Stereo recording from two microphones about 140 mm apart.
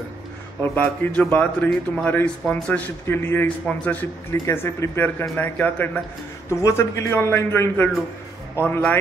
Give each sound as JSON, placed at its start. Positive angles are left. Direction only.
{"t": 0.6, "sound": "a man's voice", "side_deg": 10}